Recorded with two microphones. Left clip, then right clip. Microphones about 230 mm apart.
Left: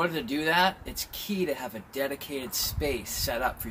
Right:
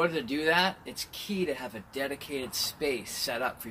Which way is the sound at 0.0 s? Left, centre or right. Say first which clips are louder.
Even; centre.